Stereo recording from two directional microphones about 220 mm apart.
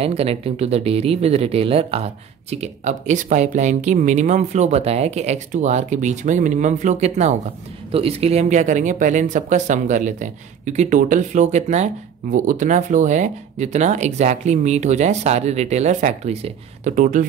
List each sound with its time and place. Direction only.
0.0 s speech: 25° right (ahead or behind)